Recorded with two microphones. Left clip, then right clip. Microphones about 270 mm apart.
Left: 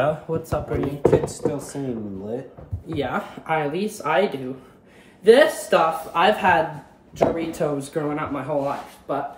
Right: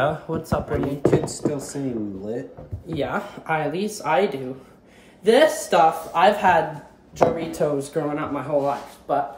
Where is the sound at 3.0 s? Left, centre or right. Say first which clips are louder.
Even; centre.